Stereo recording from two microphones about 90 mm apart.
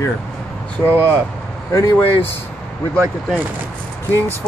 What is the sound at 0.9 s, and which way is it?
Speech, 25° right (ahead or behind).